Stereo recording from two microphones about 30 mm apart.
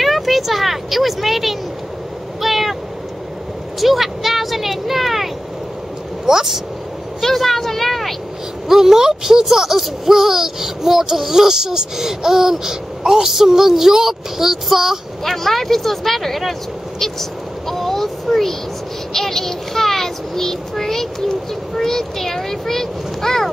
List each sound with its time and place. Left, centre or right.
0.0 s speech: centre
2.4 s meow: centre
3.8 s speech: centre
6.2 s a child's voice: centre
7.3 s a sound: centre
8.6 s a child's voice: centre
15.2 s a child's voice: centre
17.0 s a sound: centre
19.1 s a child's voice: centre